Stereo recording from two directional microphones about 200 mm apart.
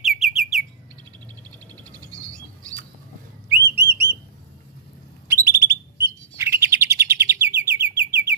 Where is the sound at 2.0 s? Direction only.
15° right (ahead or behind).